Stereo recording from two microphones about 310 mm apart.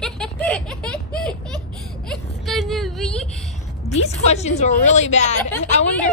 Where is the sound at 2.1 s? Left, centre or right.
Centre.